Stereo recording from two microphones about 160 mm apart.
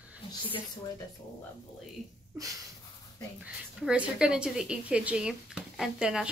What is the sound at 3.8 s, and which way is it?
Speech, 5° right (ahead or behind).